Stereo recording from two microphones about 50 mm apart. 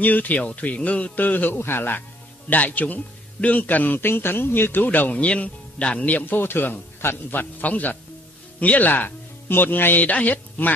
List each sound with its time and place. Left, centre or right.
0.0 s a man's voice: left
2.5 s a man's voice: left
5.2 s speech: left
6.3 s a man's voice: left